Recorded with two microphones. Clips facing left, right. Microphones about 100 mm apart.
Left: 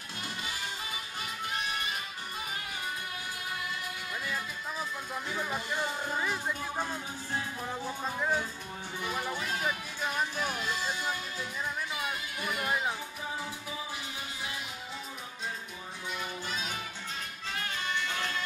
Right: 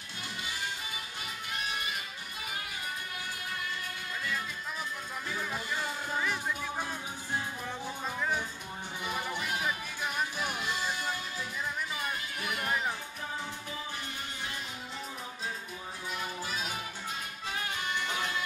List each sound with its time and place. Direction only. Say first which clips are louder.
5.5 s music: left 2 dB; 10° left (ahead or behind)
7.6 s speech: left 2 dB; 15° left (ahead or behind)
10.1 s music: left 2 dB; 5° right (ahead or behind)
16.2 s music: right 1 dB; 5° right (ahead or behind)